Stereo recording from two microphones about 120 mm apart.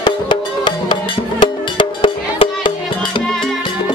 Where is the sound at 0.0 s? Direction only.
40° left (ahead or behind).